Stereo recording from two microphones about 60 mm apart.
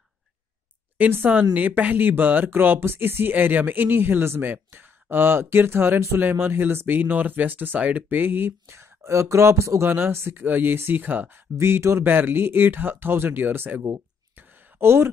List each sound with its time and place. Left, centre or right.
0.9 s speech: right
8.6 s speech: right
9.8 s speech: right
11.5 s speech: right